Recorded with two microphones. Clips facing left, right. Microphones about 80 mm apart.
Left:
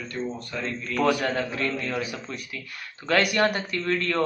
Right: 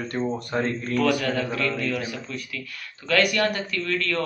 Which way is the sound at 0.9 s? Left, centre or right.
Left.